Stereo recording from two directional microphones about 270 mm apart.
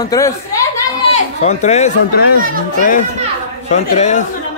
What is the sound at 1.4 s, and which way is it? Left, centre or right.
Speech, left.